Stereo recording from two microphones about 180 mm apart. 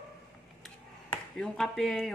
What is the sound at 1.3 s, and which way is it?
Speech, 5° left (ahead or behind).